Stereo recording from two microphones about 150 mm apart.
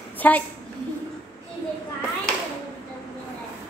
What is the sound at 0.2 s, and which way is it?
Speech, 10° left (ahead or behind).